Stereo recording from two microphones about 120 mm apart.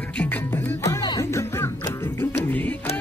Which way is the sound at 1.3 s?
20° left (ahead or behind).